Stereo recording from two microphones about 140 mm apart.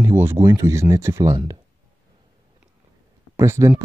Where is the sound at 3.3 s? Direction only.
20° right (ahead or behind).